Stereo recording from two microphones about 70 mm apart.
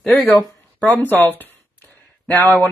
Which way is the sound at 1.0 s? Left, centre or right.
Left.